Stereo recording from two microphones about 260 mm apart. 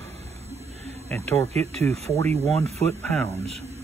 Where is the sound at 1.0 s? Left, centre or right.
Centre.